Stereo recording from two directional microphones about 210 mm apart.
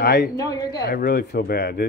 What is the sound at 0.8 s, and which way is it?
Speech, 45° left (ahead or behind).